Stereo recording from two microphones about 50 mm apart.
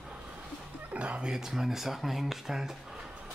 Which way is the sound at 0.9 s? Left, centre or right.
Right.